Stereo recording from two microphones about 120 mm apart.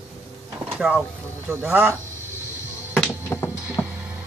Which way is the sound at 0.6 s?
10° right (ahead or behind).